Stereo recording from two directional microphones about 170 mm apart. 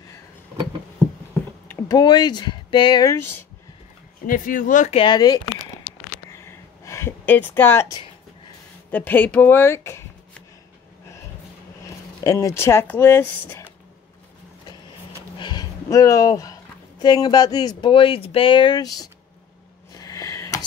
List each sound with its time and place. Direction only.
1.7 s speech: 15° left (ahead or behind)
4.3 s speech: 50° left (ahead or behind)
4.9 s speech: 25° left (ahead or behind)
5.9 s a sound: 15° left (ahead or behind)
8.9 s speech: 10° left (ahead or behind)
11.8 s speech: 20° left (ahead or behind)
15.3 s a sound: 25° left (ahead or behind)
17.0 s speech: 25° left (ahead or behind)
19.9 s a sound: 20° left (ahead or behind)